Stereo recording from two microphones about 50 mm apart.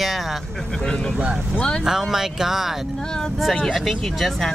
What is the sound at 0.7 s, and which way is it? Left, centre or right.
Speech, centre.